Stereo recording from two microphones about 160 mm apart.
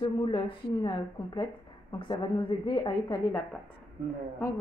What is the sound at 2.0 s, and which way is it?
A woman's voice, 30° left (ahead or behind).